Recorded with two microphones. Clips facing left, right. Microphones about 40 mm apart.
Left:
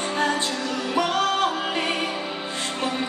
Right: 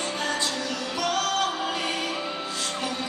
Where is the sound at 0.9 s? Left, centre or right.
Left.